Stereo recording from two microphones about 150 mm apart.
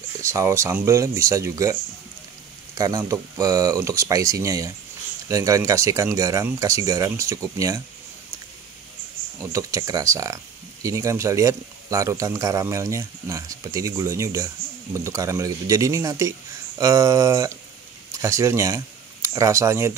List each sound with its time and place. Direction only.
0.2 s speech: 20° right (ahead or behind)
9.4 s speech: 20° right (ahead or behind)